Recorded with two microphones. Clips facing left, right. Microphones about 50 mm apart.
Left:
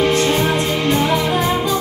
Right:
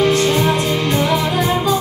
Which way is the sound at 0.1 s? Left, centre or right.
Left.